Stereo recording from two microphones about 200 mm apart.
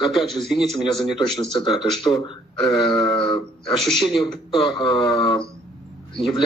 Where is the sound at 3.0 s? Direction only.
25° left (ahead or behind).